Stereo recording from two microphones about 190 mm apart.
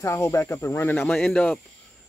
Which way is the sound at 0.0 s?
15° left (ahead or behind).